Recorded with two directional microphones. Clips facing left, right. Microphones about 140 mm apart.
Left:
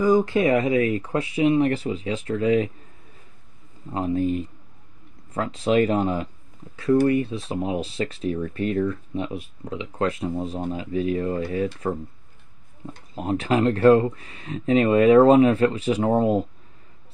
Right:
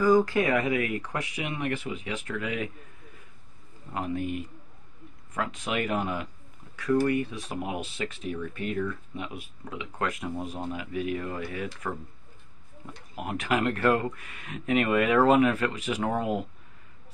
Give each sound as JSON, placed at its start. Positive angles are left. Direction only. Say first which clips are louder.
{"t": 0.0, "sound": "speech", "louder": "left 3 dB", "side_deg": 20}
{"t": 3.9, "sound": "speech", "louder": "left 7 dB", "side_deg": 30}
{"t": 13.1, "sound": "speech", "louder": "left 6 dB", "side_deg": 30}